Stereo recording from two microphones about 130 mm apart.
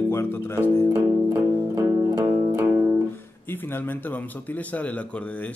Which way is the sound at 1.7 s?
25° right (ahead or behind).